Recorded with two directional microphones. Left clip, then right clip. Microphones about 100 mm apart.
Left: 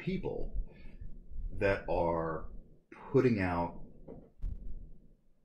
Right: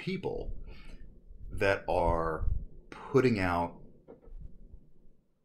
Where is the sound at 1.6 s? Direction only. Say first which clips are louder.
Right 3 dB; 20° right (ahead or behind).